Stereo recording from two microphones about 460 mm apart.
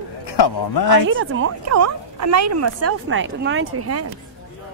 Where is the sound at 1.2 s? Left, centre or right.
Right.